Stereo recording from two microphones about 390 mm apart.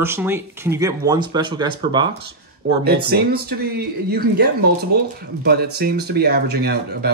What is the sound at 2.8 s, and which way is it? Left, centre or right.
Speech, right.